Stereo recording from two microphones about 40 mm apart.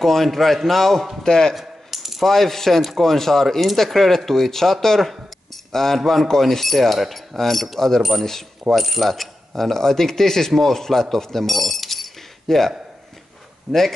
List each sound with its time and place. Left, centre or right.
0.0 s a man's voice: centre
1.2 s a man's voice: centre
1.5 s a sound: centre
2.2 s a man's voice: centre
8.7 s a sound: centre
13.7 s a man's voice: centre